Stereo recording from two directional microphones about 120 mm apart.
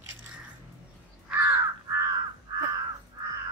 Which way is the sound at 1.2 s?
20° right (ahead or behind).